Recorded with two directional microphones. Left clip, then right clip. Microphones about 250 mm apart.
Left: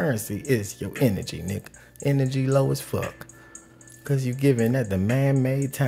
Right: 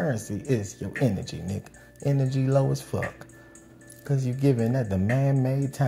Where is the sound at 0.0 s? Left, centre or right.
Centre.